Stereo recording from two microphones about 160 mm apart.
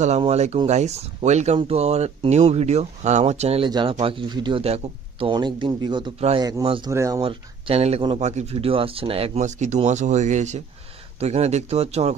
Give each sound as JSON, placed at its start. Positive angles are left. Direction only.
{"t": 0.2, "sound": "a man's voice", "side_deg": -40}
{"t": 6.9, "sound": "speech", "side_deg": -20}
{"t": 7.2, "sound": "speech", "side_deg": -35}